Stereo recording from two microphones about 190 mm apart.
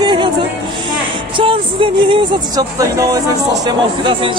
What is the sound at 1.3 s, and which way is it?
Speech, 25° right (ahead or behind).